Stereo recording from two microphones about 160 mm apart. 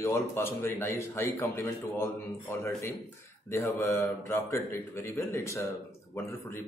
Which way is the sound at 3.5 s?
15° left (ahead or behind).